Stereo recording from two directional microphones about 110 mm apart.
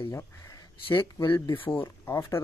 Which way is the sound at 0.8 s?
45° left (ahead or behind).